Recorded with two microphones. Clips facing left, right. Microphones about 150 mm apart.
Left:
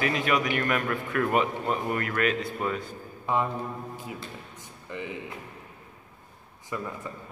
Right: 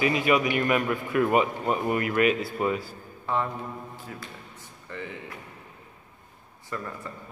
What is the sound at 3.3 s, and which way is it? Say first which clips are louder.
Speech: left 1 dB; 15° left (ahead or behind).